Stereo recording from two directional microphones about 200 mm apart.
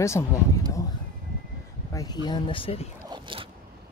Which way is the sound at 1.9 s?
20° left (ahead or behind).